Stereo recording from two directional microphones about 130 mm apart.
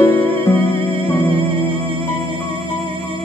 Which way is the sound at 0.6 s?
45° right (ahead or behind).